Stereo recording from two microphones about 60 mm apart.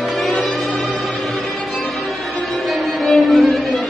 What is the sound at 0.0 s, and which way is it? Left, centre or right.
Music, centre.